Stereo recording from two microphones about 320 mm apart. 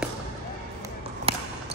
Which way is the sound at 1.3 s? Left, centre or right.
Centre.